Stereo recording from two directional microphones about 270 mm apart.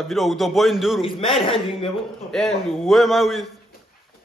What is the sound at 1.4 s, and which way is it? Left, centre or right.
Speech, centre.